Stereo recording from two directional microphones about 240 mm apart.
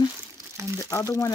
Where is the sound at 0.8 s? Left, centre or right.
Centre.